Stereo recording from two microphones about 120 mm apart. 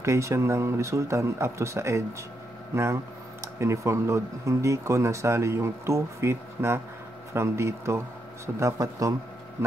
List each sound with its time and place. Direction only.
0.0 s speech: 25° right (ahead or behind)